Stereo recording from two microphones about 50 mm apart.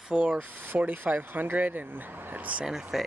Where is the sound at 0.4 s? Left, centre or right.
Right.